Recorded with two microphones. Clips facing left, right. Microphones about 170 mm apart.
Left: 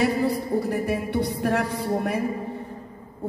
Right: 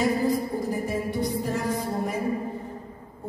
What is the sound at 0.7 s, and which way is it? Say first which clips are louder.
Music: left 2 dB; 70° left (ahead or behind).